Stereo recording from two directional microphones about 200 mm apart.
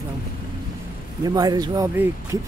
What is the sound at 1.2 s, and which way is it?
Speech, 20° right (ahead or behind).